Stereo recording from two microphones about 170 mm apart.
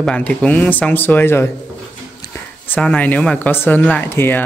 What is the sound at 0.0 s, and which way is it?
Speech, 5° left (ahead or behind).